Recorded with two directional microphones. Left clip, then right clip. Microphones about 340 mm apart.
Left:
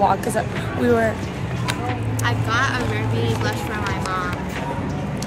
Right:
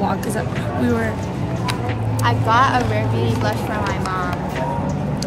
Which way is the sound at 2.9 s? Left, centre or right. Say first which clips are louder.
Right 2 dB; centre.